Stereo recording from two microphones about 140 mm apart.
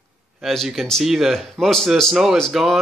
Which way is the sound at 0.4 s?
Centre (ahead or behind).